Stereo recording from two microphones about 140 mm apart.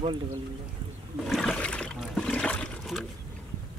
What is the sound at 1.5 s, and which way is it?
Water, 10° left (ahead or behind).